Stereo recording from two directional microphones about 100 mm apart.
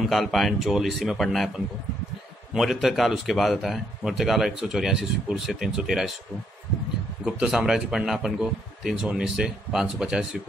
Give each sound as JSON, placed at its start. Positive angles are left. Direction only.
{"t": 0.0, "sound": "speech", "side_deg": 0}
{"t": 2.5, "sound": "speech", "side_deg": 0}
{"t": 7.2, "sound": "speech", "side_deg": -5}